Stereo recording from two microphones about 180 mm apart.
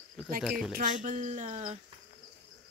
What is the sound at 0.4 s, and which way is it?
Speech, centre (ahead or behind).